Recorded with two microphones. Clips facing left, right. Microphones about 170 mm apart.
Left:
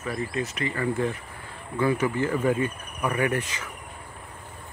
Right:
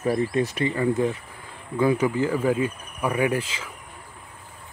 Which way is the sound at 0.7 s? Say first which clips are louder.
Right 3 dB; 15° right (ahead or behind).